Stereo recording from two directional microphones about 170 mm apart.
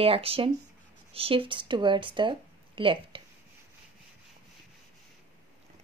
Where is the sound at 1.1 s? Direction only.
30° right (ahead or behind).